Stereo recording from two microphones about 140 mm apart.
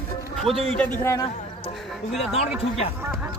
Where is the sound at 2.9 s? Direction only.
15° right (ahead or behind).